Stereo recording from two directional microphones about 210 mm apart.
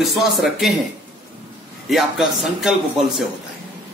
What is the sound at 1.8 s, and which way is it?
Speech, centre (ahead or behind).